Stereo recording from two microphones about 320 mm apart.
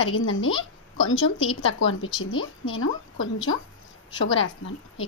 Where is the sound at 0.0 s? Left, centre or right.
Left.